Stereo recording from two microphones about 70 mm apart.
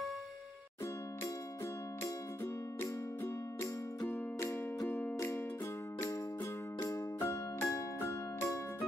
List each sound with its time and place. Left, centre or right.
4.4 s music: left
4.8 s music: left
6.8 s music: left